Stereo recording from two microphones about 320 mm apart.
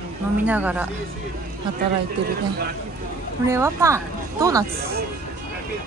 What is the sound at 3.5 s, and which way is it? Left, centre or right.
Speech, centre.